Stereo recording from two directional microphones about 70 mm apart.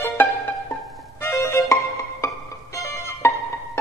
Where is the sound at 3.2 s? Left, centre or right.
Left.